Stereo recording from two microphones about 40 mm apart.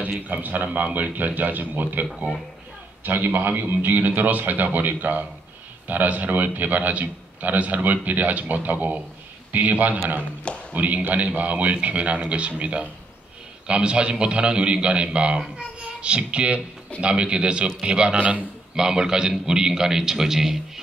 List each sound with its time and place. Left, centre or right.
0.3 s a man's voice: right; by 20.8 s centre